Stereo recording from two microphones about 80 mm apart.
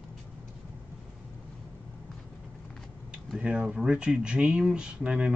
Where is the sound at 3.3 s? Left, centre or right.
Centre.